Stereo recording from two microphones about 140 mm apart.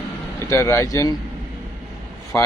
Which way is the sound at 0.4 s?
20° left (ahead or behind).